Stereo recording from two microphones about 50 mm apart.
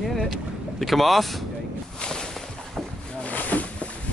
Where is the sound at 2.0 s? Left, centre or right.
Centre.